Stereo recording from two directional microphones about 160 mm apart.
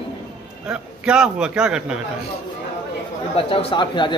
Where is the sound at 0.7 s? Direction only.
5° right (ahead or behind).